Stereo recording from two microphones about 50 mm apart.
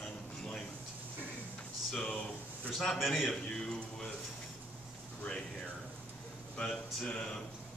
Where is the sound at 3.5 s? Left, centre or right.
Centre.